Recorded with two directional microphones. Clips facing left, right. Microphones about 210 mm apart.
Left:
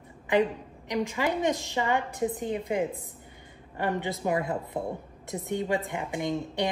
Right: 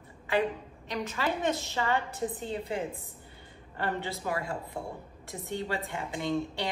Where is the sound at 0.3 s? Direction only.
15° left (ahead or behind).